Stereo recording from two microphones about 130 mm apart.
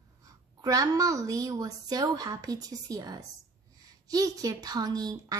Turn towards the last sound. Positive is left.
turn(degrees=-30)  # may be behind; listen again after turning